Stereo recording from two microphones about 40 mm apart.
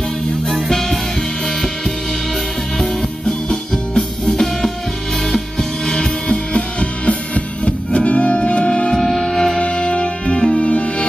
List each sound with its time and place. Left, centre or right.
0.7 s music: centre
2.8 s music: centre
8.9 s music: centre
9.6 s music: left